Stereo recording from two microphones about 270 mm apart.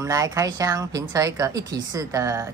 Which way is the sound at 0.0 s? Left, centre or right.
Centre.